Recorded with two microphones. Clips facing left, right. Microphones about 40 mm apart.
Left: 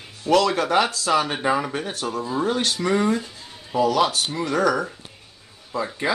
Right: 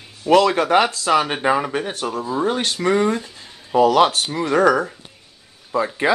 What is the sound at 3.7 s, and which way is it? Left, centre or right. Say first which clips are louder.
Speech: right 5 dB; right.